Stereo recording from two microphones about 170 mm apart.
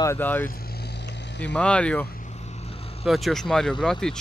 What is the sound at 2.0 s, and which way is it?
Vehicle, 60° left (ahead or behind).